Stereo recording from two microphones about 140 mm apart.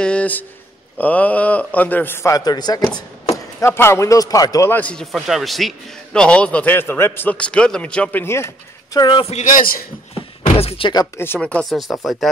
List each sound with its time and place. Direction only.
0.0 s a man's voice: 10° left (ahead or behind)
5.1 s a man's voice: centre (ahead or behind); by 9.3 s 30° left (ahead or behind)
9.3 s a man's voice: 65° left (ahead or behind); by 9.8 s 90° left
10.1 s door: 45° left (ahead or behind)
11.4 s a man's voice: 10° left (ahead or behind)